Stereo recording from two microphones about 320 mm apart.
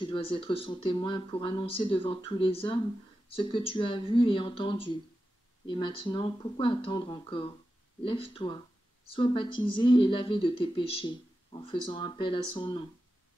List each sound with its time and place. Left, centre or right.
0.0 s speech: centre